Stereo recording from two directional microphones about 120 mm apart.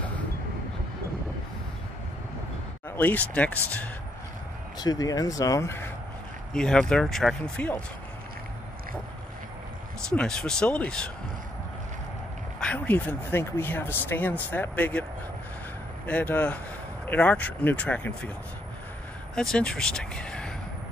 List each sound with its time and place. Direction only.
3.0 s speech: 15° left (ahead or behind)
4.7 s speech: 35° left (ahead or behind)
6.5 s speech: 5° left (ahead or behind)
10.0 s speech: 5° left (ahead or behind)
12.5 s speech: 10° left (ahead or behind)
16.1 s speech: 15° left (ahead or behind)
19.3 s speech: 5° left (ahead or behind)